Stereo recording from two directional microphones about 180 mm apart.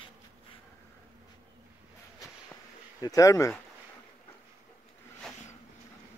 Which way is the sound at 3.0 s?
20° left (ahead or behind).